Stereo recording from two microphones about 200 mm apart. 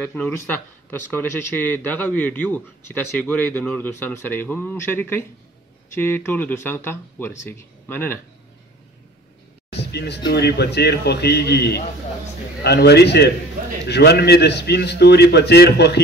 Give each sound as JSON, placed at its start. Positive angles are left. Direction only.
{"t": 0.0, "sound": "speech", "side_deg": 10}
{"t": 9.8, "sound": "a man's voice", "side_deg": 55}